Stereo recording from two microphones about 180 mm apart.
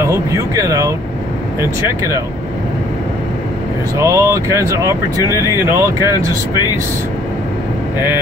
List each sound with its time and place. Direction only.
0.6 s speech: 20° right (ahead or behind)
4.0 s speech: 15° right (ahead or behind)